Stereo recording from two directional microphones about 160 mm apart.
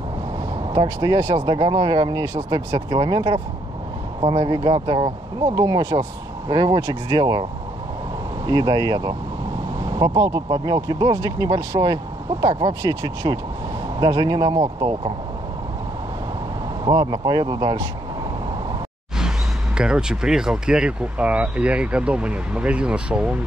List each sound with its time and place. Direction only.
0.7 s speech: 25° right (ahead or behind)
8.5 s speech: 25° right (ahead or behind)
16.8 s speech: 25° right (ahead or behind)
19.1 s speech: 5° right (ahead or behind)